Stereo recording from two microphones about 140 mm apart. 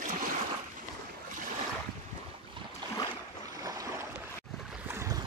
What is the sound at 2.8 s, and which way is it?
Boat, 35° right (ahead or behind).